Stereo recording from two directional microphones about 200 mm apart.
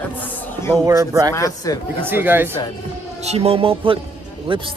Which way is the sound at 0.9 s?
15° right (ahead or behind).